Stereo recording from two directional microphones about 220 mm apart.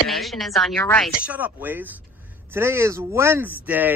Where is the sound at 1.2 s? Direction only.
5° right (ahead or behind).